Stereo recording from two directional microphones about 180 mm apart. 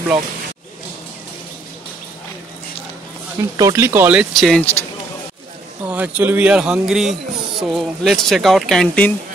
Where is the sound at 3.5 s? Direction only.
15° right (ahead or behind); by 4.6 s centre (ahead or behind).